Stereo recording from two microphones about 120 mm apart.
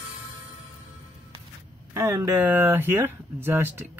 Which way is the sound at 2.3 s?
15° right (ahead or behind).